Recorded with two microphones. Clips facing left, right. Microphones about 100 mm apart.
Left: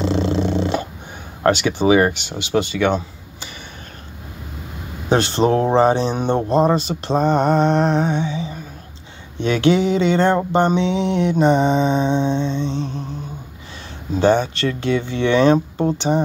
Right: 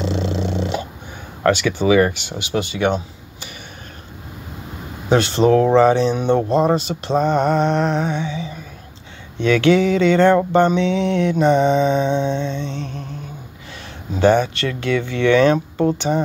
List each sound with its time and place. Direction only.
0.0 s purr: 40° left (ahead or behind)
1.5 s mantra: 25° left (ahead or behind)
5.1 s mantra: 35° left (ahead or behind)
9.4 s mantra: 30° left (ahead or behind)
14.1 s mantra: 30° left (ahead or behind)